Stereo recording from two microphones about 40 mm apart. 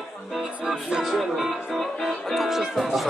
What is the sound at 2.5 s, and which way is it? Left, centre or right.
Speech, centre.